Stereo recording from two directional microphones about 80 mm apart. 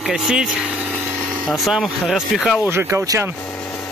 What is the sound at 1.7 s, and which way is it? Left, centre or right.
Speech, centre.